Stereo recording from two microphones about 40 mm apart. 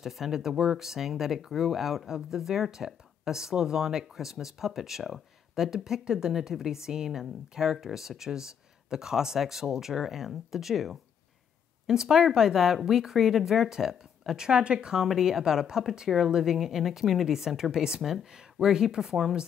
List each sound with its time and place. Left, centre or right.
0.0 s speech: centre
14.4 s speech: right
15.0 s speech: centre
18.0 s speech: centre